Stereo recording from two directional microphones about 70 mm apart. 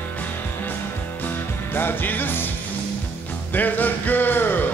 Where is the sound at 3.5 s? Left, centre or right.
Left.